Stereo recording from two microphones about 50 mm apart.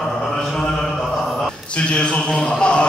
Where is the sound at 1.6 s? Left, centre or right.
Left.